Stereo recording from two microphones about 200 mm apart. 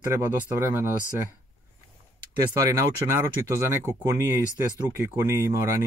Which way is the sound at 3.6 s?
15° right (ahead or behind).